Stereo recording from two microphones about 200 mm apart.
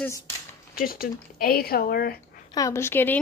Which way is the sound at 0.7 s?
45° left (ahead or behind).